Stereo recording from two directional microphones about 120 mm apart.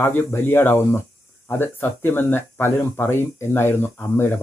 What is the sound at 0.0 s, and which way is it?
Speech, 20° left (ahead or behind).